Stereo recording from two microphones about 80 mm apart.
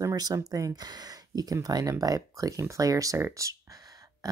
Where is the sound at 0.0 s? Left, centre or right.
Right.